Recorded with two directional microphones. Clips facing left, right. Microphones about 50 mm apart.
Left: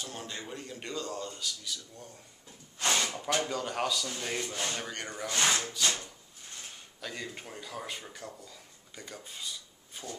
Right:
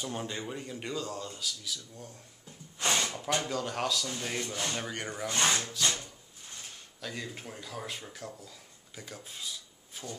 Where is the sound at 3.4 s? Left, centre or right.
Centre.